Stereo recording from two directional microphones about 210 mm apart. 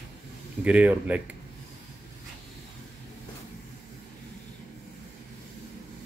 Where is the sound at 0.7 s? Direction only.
5° right (ahead or behind).